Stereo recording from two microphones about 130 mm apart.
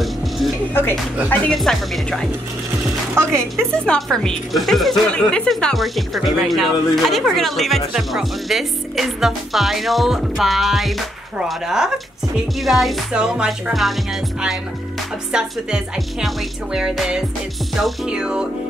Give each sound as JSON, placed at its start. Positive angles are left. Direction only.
{"t": 0.0, "sound": "music", "side_deg": 0}
{"t": 1.5, "sound": "speech", "side_deg": 0}
{"t": 3.2, "sound": "speech", "side_deg": -20}
{"t": 3.8, "sound": "speech", "side_deg": 5}
{"t": 15.3, "sound": "speech", "side_deg": -5}
{"t": 17.7, "sound": "music", "side_deg": -5}